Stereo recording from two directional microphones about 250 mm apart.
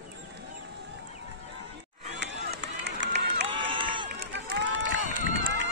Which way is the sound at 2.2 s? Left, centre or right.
Right.